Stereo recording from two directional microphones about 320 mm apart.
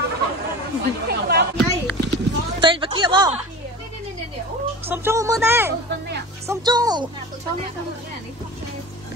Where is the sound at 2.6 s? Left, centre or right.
Centre.